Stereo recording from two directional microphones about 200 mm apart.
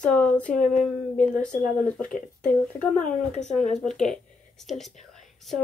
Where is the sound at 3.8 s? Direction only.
5° left (ahead or behind).